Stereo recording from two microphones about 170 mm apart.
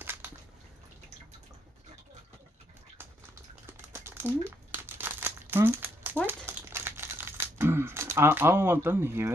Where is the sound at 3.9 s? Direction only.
15° right (ahead or behind).